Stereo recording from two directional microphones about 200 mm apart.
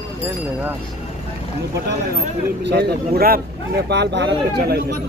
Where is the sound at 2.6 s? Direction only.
55° right (ahead or behind).